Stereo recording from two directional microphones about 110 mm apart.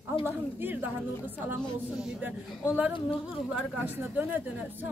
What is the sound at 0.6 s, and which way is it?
A woman's voice, 20° right (ahead or behind).